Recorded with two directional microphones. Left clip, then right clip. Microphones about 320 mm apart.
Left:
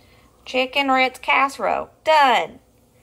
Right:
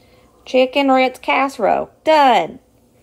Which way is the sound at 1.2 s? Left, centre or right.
Centre.